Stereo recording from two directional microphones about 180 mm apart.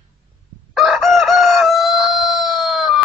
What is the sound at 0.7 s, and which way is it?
Chicken, centre (ahead or behind).